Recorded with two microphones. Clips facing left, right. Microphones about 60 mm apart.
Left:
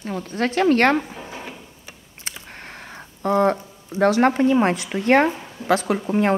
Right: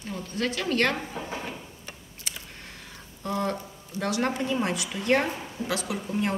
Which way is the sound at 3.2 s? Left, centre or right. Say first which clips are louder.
Left 10 dB; left.